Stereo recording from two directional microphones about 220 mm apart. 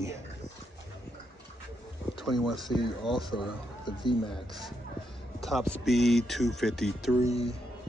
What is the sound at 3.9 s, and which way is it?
Speech, 20° left (ahead or behind).